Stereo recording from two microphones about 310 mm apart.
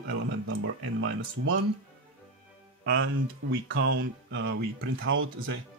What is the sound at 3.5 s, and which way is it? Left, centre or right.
Speech, right.